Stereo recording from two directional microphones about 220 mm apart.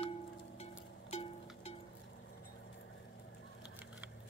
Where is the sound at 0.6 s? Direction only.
25° left (ahead or behind).